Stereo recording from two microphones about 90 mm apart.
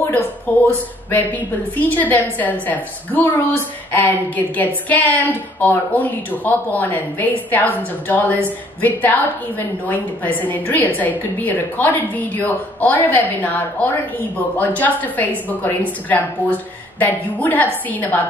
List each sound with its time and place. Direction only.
0.5 s a woman's voice: 20° left (ahead or behind)
1.8 s a woman's voice: 20° left (ahead or behind)